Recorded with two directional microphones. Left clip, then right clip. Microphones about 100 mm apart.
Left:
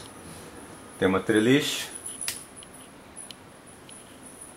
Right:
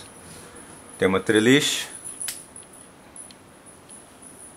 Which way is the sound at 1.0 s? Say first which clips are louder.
Right 3 dB; 15° right (ahead or behind).